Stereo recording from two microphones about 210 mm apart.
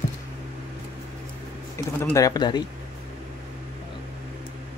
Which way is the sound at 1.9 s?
10° left (ahead or behind).